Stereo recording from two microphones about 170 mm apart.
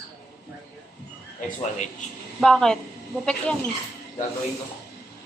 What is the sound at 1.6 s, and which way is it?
Speech, 45° left (ahead or behind).